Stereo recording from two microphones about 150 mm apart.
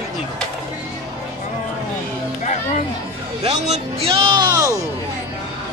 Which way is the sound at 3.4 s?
50° right (ahead or behind).